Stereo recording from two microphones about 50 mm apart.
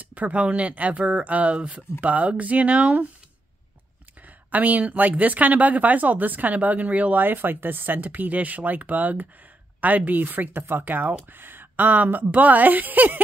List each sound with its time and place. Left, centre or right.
0.0 s speech: right
4.5 s speech: right